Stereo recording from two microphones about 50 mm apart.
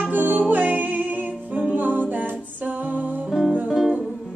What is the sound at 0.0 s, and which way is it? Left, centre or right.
Music, right.